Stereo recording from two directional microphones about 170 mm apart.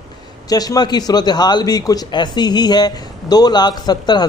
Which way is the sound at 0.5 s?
20° left (ahead or behind).